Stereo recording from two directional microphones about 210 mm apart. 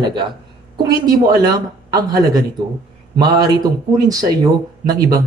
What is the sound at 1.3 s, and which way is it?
A man's voice, 20° right (ahead or behind).